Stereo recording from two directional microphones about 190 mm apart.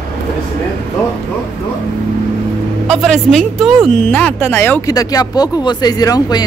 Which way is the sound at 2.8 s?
Centre (ahead or behind).